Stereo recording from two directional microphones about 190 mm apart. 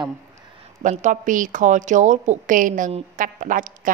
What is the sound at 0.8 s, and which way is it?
A woman's voice, 40° right (ahead or behind).